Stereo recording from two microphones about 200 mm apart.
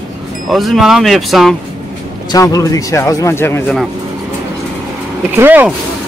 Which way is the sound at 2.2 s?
15° left (ahead or behind).